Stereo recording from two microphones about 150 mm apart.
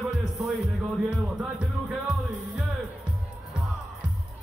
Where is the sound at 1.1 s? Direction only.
5° right (ahead or behind).